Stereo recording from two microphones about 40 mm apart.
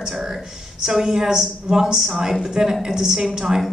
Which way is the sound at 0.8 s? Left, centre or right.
Centre.